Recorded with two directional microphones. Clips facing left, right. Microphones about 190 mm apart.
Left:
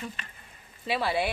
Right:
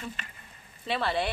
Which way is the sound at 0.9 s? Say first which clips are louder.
Left 1 dB; 5° left (ahead or behind).